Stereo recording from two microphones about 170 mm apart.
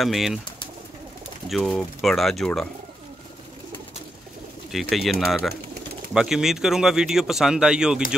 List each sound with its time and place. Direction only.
0.0 s speech: centre (ahead or behind)
1.5 s speech: centre (ahead or behind)
4.6 s speech: centre (ahead or behind)